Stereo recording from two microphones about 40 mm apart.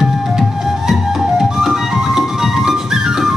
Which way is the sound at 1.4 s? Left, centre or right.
Centre.